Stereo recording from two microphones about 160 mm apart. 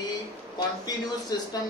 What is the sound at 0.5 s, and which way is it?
A man's voice, 25° left (ahead or behind).